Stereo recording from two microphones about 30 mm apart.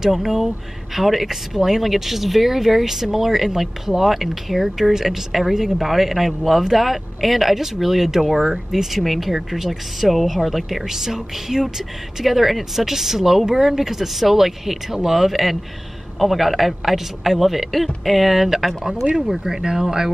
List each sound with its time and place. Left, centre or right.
0.0 s speech: centre
10.9 s speech: centre